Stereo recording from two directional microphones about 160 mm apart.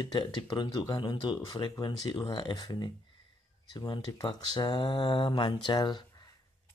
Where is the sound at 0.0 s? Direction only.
30° left (ahead or behind).